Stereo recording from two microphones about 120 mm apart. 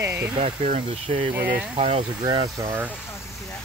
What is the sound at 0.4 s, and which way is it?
Speech, 70° right (ahead or behind).